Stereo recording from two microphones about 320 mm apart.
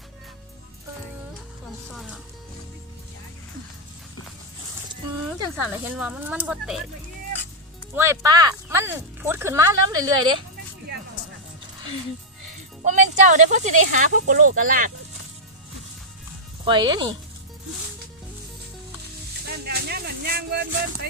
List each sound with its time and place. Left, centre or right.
5.6 s speech: centre
7.9 s speech: centre
12.8 s speech: right
16.6 s speech: centre
19.4 s a sound: right